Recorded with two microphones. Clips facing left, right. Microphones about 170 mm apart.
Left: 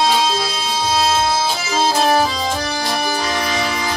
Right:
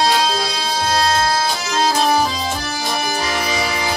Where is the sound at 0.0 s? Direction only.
Centre (ahead or behind).